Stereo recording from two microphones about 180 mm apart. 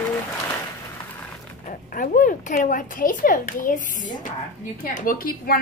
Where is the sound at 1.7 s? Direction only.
50° left (ahead or behind).